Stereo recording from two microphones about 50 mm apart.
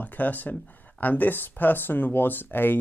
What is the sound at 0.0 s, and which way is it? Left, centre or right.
Speech, left.